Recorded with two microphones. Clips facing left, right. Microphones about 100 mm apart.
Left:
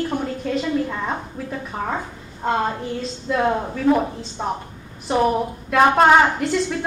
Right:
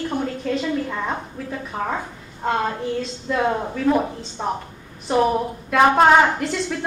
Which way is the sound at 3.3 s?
Centre (ahead or behind).